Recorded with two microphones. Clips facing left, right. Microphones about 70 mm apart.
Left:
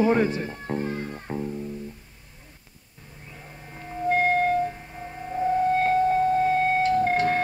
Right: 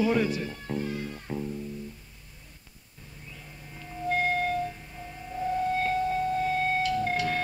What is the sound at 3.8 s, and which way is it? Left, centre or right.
Music, left.